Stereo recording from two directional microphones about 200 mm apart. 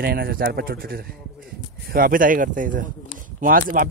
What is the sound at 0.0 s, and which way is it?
Speech, 50° right (ahead or behind).